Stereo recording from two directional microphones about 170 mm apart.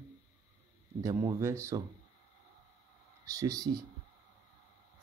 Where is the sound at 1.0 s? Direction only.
15° right (ahead or behind).